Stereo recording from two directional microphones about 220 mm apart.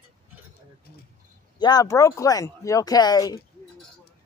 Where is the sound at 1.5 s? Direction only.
20° left (ahead or behind).